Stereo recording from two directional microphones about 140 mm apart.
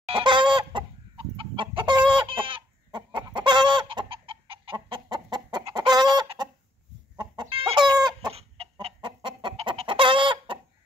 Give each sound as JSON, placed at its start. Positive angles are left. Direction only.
{"t": 0.0, "sound": "chicken", "side_deg": -35}
{"t": 8.3, "sound": "chicken", "side_deg": -45}